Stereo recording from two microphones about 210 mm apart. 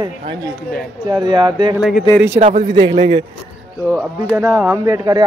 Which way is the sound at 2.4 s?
35° right (ahead or behind).